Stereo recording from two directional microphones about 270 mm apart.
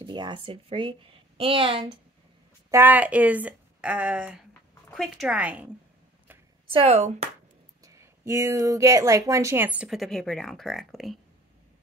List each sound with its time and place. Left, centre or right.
0.0 s a woman's voice: centre
2.7 s a woman's voice: centre
6.7 s a woman's voice: right
7.8 s speech: centre